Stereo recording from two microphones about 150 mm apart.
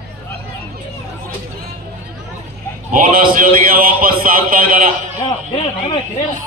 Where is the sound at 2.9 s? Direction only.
70° right (ahead or behind).